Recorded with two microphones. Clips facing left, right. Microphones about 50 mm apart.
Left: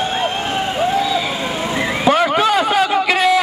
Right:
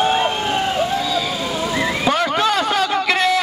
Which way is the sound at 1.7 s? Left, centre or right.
Left.